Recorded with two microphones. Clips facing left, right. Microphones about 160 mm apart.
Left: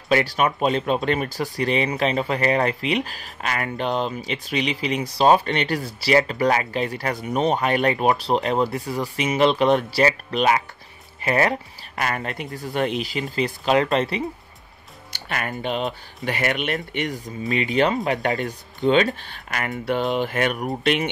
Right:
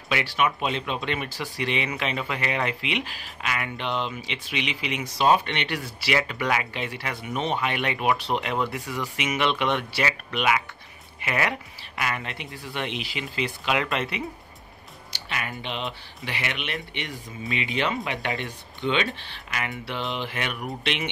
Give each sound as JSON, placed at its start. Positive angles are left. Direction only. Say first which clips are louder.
{"t": 0.1, "sound": "speech", "louder": "left 5 dB", "side_deg": 40}
{"t": 15.1, "sound": "speech", "louder": "left 5 dB", "side_deg": 50}